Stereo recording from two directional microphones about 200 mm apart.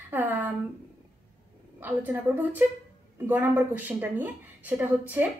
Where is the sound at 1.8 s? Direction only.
10° right (ahead or behind).